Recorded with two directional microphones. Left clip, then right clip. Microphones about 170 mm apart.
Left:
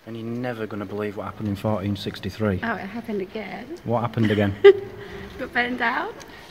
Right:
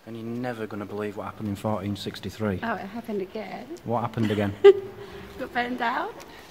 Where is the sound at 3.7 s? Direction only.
5° left (ahead or behind).